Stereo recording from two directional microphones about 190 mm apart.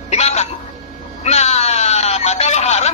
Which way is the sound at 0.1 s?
35° left (ahead or behind).